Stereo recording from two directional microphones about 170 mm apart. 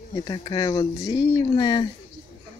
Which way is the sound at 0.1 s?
25° left (ahead or behind).